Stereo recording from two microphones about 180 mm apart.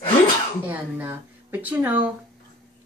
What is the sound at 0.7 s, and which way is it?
A woman's voice, 10° right (ahead or behind).